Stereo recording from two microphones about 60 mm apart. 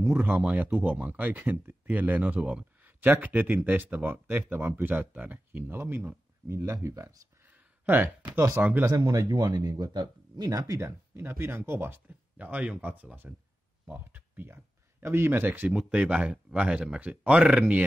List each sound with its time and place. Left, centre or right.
0.5 s speech: right
6.5 s speech: right
7.4 s a sound: right
8.5 s speech: right
8.8 s speech: right
11.2 s speech: right
12.1 s speech: right
14.4 s speech: right
15.7 s speech: centre